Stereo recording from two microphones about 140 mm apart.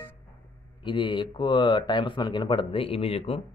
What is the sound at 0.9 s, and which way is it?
Speech, 35° left (ahead or behind).